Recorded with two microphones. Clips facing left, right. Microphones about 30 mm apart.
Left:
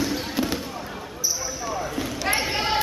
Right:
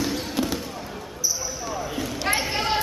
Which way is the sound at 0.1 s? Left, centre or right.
Centre.